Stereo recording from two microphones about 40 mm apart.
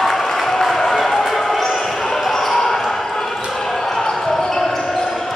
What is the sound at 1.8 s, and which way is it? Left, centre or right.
Basketball bounce, centre.